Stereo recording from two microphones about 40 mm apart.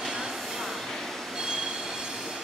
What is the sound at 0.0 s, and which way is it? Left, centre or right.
Train, centre.